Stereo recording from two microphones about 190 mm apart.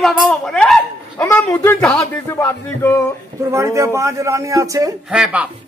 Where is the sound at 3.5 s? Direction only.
15° right (ahead or behind).